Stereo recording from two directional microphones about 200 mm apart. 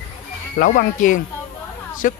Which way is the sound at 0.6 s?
45° left (ahead or behind).